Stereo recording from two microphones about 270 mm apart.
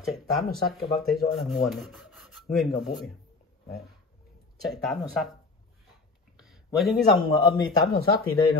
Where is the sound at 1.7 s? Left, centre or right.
Centre.